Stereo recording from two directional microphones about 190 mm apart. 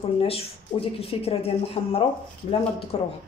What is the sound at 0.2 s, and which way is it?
A woman's voice, 30° left (ahead or behind).